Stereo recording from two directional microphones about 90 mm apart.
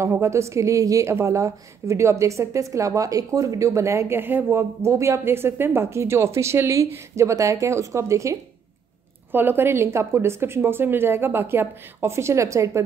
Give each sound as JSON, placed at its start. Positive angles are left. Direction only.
{"t": 0.0, "sound": "a woman's voice", "side_deg": -30}
{"t": 9.3, "sound": "speech", "side_deg": -25}